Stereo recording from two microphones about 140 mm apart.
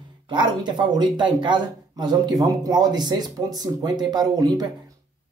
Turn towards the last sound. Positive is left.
turn(degrees=-30)  # may be behind; listen again after turning